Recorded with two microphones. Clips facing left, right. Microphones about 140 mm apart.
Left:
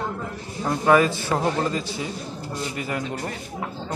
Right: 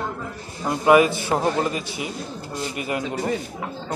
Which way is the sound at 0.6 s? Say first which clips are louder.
Right 2 dB; 15° right (ahead or behind).